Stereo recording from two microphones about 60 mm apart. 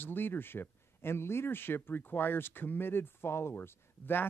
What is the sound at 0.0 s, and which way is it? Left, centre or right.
Speech, left.